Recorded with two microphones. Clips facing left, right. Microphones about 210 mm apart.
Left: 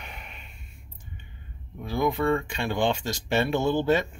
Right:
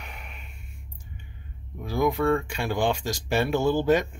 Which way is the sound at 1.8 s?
10° right (ahead or behind).